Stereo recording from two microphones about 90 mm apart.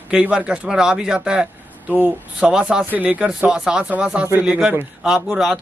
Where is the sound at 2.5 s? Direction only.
10° right (ahead or behind).